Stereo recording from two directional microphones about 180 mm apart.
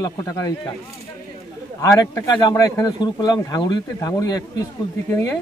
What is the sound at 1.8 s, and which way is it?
Speech, 20° left (ahead or behind).